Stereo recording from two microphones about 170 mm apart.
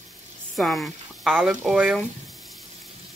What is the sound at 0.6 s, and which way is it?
Speech, centre (ahead or behind).